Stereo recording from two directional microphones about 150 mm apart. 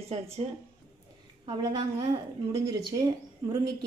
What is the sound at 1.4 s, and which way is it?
A woman's voice, 30° right (ahead or behind).